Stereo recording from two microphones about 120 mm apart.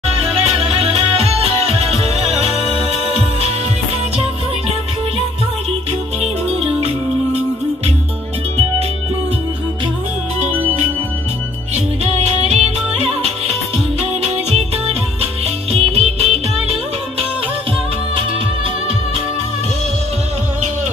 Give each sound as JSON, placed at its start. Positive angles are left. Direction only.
{"t": 0.1, "sound": "music", "side_deg": -55}
{"t": 12.4, "sound": "music", "side_deg": -60}
{"t": 15.4, "sound": "music", "side_deg": -60}